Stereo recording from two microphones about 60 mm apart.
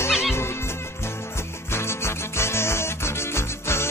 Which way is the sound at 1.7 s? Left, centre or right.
Left.